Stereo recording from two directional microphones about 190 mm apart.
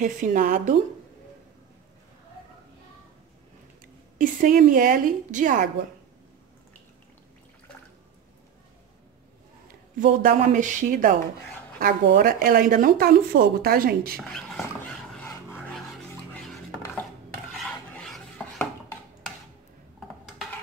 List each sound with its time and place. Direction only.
0.0 s speech: 45° right (ahead or behind)
3.8 s a woman's voice: 45° right (ahead or behind)
9.7 s speech: 45° right (ahead or behind)
14.1 s speech: 5° left (ahead or behind)
15.1 s a sound: 10° left (ahead or behind)
16.3 s dishes: 5° left (ahead or behind)